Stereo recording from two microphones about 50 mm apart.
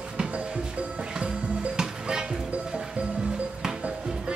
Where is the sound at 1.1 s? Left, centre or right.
Centre.